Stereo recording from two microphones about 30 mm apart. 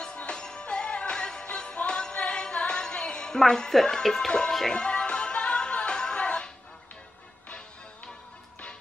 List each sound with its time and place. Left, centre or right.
0.3 s music: left
2.1 s music: left
3.3 s speech: left
4.6 s music: left